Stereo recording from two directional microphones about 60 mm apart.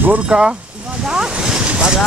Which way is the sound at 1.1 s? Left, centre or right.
Centre.